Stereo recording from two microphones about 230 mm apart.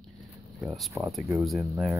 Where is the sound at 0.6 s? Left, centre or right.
Centre.